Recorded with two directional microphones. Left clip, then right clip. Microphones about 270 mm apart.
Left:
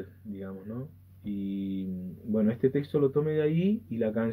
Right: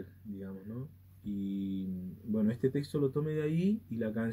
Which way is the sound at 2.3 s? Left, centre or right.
Centre.